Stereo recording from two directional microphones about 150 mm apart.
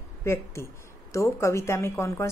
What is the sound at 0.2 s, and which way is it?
A woman's voice, 20° left (ahead or behind).